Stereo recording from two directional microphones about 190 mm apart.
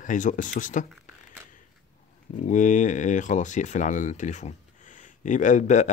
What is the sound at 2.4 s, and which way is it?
Speech, 40° left (ahead or behind).